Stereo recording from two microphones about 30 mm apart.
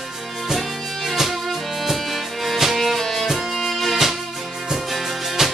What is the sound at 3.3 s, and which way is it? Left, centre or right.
Music, centre.